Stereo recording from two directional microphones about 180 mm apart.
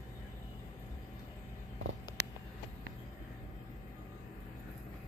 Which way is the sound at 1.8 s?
90° right.